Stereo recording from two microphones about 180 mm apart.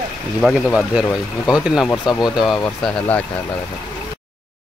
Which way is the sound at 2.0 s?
25° left (ahead or behind).